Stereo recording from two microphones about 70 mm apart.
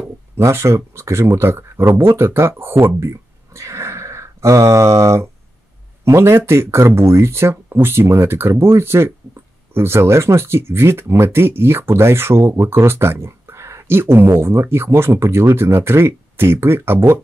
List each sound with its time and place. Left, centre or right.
0.4 s speech: right
3.0 s a sound: right
6.0 s speech: right